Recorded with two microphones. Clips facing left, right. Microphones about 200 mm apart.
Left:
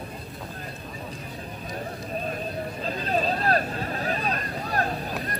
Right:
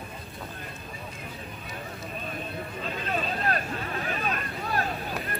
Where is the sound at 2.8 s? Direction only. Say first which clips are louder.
Left 5 dB; 35° left (ahead or behind).